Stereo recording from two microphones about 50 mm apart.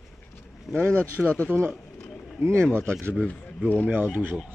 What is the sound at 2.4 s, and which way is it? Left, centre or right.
Speech, right.